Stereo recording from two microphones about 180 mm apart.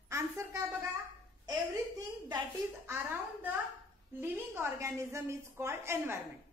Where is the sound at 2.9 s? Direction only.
10° right (ahead or behind).